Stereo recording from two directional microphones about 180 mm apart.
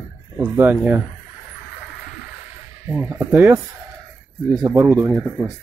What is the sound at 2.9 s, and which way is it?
Speech, 15° right (ahead or behind).